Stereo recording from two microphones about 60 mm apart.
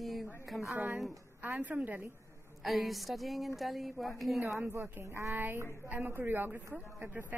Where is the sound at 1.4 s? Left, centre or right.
Right.